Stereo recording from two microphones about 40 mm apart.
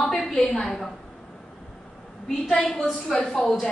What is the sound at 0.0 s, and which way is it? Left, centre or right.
Speech, centre.